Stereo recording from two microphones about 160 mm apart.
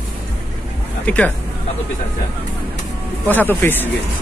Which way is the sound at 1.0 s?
10° left (ahead or behind).